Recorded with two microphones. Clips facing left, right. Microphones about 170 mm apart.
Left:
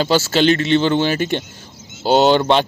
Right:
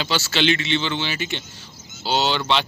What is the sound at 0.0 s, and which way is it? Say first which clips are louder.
Speech: left 7 dB; 45° left (ahead or behind).